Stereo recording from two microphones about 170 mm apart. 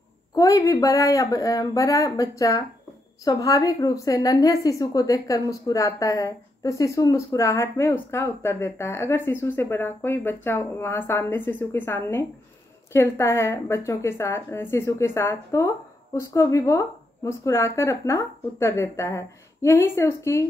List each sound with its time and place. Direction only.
0.3 s a woman's voice: 20° left (ahead or behind)